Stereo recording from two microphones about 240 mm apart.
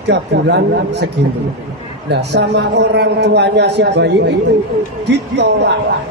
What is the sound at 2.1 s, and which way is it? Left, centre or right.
A man's voice, right.